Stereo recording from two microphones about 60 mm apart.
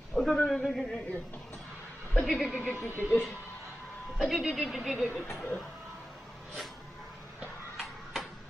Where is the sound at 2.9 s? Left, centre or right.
Right.